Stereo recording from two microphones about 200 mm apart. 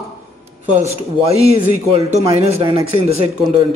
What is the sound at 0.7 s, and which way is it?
A man's voice, 30° right (ahead or behind).